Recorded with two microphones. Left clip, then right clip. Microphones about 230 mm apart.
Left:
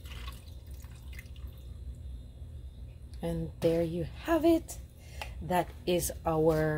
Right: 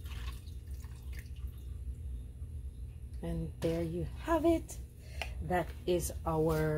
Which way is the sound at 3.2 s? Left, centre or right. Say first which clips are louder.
Left 7 dB; left.